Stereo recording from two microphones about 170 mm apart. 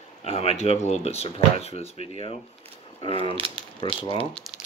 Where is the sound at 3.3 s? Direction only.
30° right (ahead or behind).